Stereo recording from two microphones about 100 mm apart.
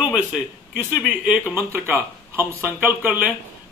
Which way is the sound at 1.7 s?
25° right (ahead or behind).